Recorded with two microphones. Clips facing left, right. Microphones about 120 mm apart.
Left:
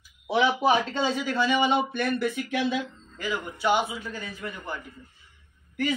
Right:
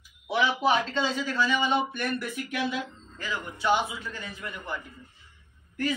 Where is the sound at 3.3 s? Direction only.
20° left (ahead or behind).